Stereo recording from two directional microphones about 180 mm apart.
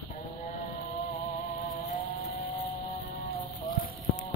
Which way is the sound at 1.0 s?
50° left (ahead or behind).